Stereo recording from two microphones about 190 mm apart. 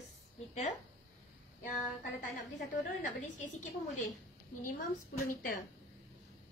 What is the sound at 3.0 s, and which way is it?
A woman's voice, 40° left (ahead or behind).